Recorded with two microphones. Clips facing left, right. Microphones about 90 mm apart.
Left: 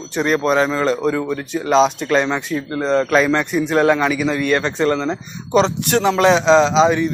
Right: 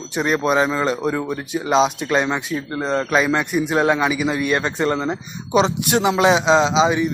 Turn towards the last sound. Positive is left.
turn(degrees=-5)  # may be behind; listen again after turning